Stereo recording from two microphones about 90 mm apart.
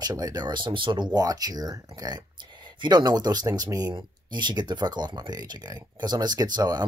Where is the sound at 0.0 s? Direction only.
45° right (ahead or behind); by 1.0 s 60° right (ahead or behind).